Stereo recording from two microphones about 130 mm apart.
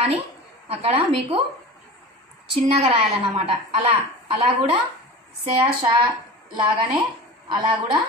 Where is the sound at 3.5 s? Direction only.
45° right (ahead or behind).